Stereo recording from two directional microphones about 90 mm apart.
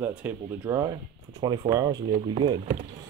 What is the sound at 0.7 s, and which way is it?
Speech, 35° right (ahead or behind).